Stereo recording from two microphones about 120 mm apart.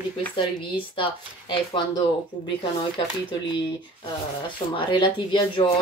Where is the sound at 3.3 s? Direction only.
40° left (ahead or behind).